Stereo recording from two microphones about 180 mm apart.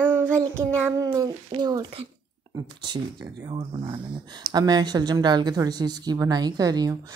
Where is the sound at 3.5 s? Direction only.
30° right (ahead or behind).